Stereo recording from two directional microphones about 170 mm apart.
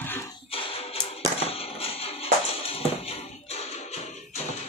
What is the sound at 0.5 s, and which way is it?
Music, 35° left (ahead or behind).